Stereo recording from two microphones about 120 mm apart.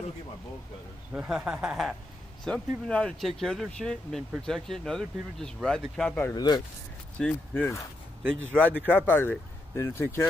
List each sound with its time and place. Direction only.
1.1 s speech: 10° right (ahead or behind)
2.4 s speech: 5° left (ahead or behind)
6.3 s speech: 35° left (ahead or behind)
7.2 s speech: 10° left (ahead or behind)
8.2 s speech: 15° right (ahead or behind)
8.9 s speech: 20° left (ahead or behind)